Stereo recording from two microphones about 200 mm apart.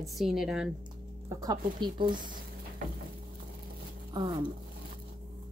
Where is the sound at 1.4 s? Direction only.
20° right (ahead or behind).